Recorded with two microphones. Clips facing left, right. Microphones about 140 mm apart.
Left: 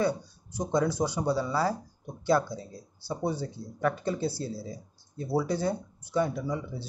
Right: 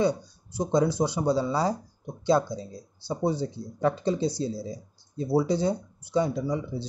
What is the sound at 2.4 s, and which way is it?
Speech, 10° left (ahead or behind).